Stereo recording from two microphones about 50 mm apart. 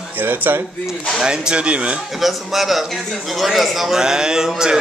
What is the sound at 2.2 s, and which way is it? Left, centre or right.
A man's voice, centre.